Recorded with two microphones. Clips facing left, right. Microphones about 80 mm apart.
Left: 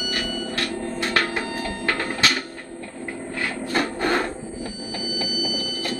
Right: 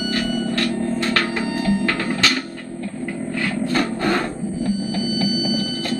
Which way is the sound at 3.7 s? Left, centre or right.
Centre.